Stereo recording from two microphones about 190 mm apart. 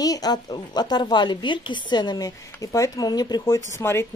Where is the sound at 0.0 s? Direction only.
20° left (ahead or behind).